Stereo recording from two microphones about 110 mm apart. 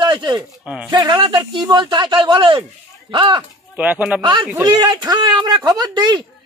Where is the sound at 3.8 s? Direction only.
15° right (ahead or behind).